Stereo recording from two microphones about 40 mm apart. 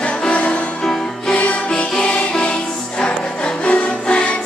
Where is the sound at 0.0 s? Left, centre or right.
Left.